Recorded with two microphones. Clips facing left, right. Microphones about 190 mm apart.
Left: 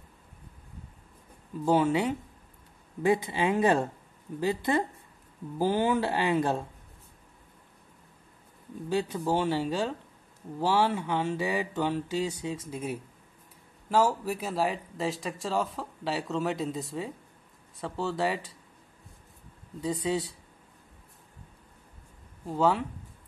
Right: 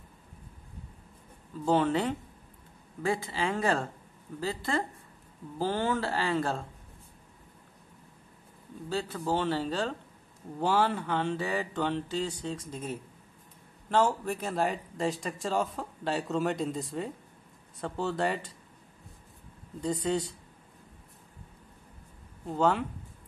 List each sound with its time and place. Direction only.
1.6 s mantra: 10° left (ahead or behind)
3.0 s speech: 20° left (ahead or behind)
5.6 s mantra: 15° left (ahead or behind)
8.8 s mantra: 15° left (ahead or behind)
13.8 s speech: 5° left (ahead or behind)
19.8 s speech: 5° left (ahead or behind)
22.5 s speech: centre (ahead or behind)